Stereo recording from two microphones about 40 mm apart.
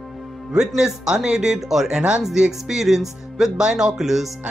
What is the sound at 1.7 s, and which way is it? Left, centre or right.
Speech, centre.